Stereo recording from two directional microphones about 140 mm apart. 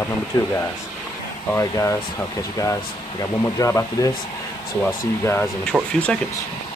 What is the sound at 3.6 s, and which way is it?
Speech, 25° left (ahead or behind).